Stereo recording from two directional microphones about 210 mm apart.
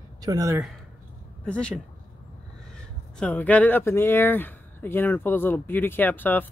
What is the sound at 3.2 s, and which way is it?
Speech, 5° left (ahead or behind).